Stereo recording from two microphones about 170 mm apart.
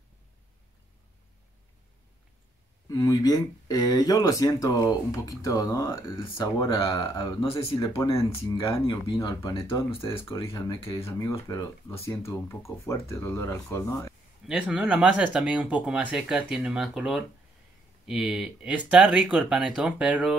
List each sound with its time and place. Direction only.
2.9 s speech: 20° left (ahead or behind)
8.5 s speech: 30° left (ahead or behind)
9.9 s speech: 15° left (ahead or behind)
14.4 s speech: 5° right (ahead or behind)